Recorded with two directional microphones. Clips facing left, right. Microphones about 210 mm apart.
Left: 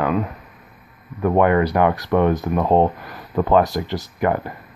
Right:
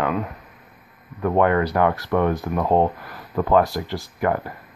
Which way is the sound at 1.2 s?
15° left (ahead or behind).